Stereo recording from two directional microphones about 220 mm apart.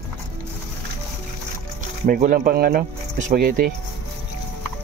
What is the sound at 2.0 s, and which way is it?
Speech, 40° right (ahead or behind).